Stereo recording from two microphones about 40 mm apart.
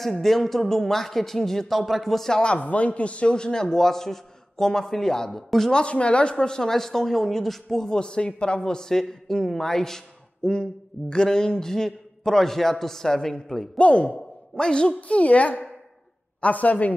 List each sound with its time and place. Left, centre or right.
0.0 s speech: centre
1.8 s speech: centre
2.6 s speech: left; by 5.4 s centre
5.7 s speech: left; by 10.0 s centre
10.4 s speech: left
13.7 s speech: left
15.0 s a woman's voice: left